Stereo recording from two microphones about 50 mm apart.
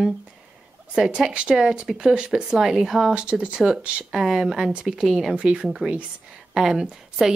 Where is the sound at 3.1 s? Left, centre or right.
Centre.